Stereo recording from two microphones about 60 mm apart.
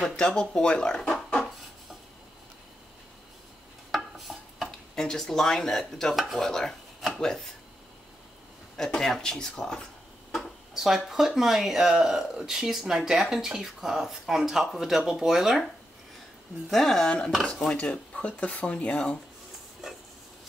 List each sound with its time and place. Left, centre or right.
0.0 s speech: centre
3.9 s a sound: centre
4.6 s speech: centre
6.1 s speech: centre
6.4 s speech: centre
8.7 s speech: centre
10.7 s speech: centre
16.7 s speech: centre
17.9 s speech: centre